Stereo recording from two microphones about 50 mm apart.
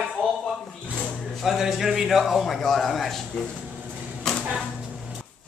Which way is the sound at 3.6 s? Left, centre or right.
Right.